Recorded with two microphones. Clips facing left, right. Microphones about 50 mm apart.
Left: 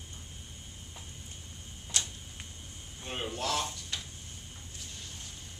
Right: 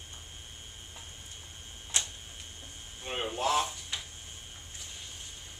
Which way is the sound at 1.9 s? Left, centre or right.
Right.